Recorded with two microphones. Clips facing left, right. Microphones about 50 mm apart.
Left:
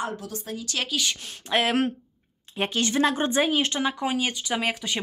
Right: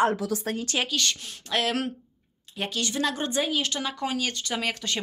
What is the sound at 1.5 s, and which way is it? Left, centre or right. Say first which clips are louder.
Speech: left 4 dB; left.